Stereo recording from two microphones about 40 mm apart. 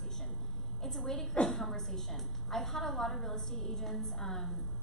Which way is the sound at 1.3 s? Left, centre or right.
Left.